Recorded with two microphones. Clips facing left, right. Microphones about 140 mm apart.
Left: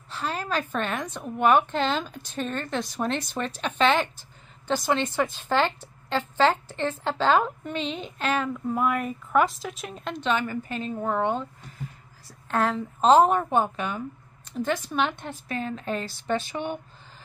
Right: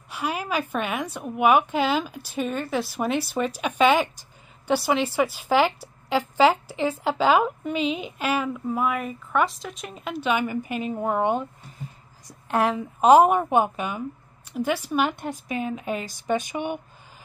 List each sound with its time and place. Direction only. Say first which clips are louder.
0.1 s a woman's voice: right 2 dB; 10° right (ahead or behind)